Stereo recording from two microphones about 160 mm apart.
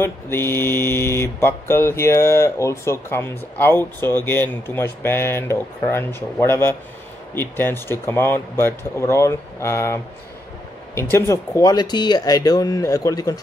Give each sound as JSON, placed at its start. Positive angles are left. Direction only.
{"t": 0.0, "sound": "mantra", "side_deg": 15}
{"t": 11.0, "sound": "speech", "side_deg": 15}